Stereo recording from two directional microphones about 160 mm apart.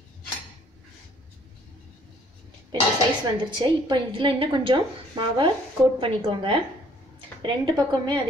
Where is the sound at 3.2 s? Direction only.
30° right (ahead or behind).